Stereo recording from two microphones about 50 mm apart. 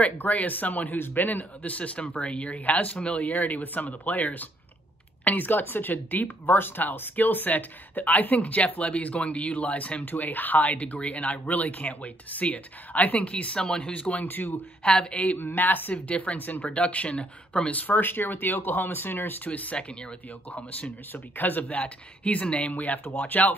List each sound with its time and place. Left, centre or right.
0.2 s speech: left
14.2 s speech: left
14.8 s speech: centre
15.3 s speech: left
16.6 s speech: left
23.0 s speech: left